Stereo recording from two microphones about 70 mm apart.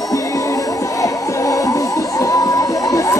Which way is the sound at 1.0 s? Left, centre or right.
Left.